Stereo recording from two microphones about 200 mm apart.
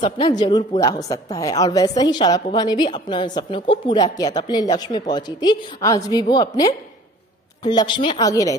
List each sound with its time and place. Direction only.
0.0 s speech: 20° left (ahead or behind)